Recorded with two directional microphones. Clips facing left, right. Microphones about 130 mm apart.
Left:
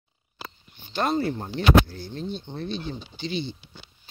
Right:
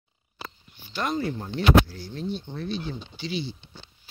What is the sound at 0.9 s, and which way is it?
Speech, 30° left (ahead or behind).